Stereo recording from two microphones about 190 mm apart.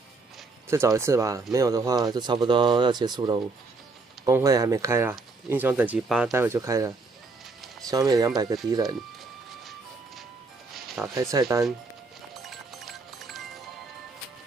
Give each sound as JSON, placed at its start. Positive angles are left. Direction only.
{"t": 0.7, "sound": "speech", "side_deg": -15}
{"t": 6.3, "sound": "speech", "side_deg": -15}
{"t": 11.1, "sound": "speech", "side_deg": -15}
{"t": 12.4, "sound": "music", "side_deg": 0}